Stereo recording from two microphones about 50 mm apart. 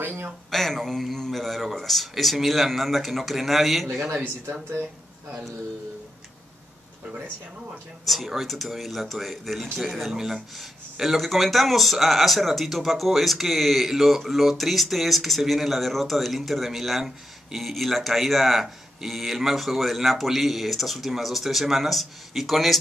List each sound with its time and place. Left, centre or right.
0.0 s a sound: right
0.5 s speech: centre
4.1 s speech: right
8.1 s speech: centre